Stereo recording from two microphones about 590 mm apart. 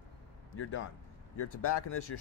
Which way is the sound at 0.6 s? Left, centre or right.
Centre.